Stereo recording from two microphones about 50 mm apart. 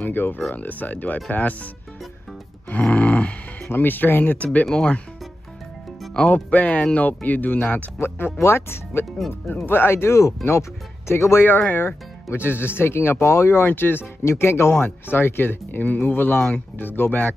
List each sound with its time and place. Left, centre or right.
0.0 s speech: left
2.8 s a sound: left
3.6 s speech: left
4.4 s speech: left
4.6 s speech: centre
6.2 s speech: left
11.1 s speech: left
12.3 s speech: left
13.7 s speech: left
14.2 s speech: left
14.7 s speech: left